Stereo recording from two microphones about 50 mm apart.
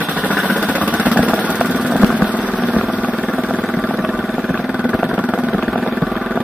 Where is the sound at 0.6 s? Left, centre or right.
Right.